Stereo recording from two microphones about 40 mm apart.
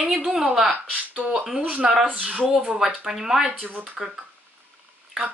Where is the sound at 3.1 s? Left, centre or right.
Centre.